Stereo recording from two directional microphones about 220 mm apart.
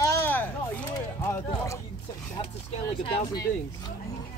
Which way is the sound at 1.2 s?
15° left (ahead or behind).